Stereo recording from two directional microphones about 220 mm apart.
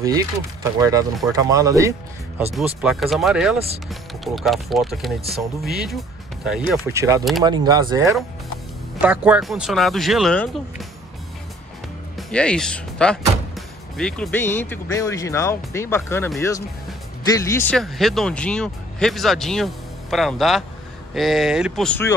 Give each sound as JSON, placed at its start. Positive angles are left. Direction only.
{"t": 0.0, "sound": "speech", "side_deg": -15}
{"t": 2.5, "sound": "speech", "side_deg": -5}
{"t": 12.2, "sound": "speech", "side_deg": 5}